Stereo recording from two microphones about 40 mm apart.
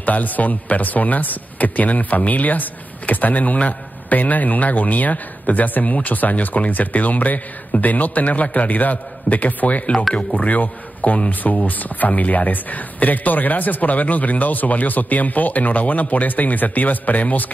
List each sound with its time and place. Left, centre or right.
0.0 s a man's voice: left